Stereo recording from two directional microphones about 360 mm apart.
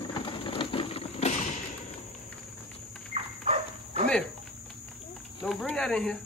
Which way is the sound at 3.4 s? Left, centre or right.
Centre.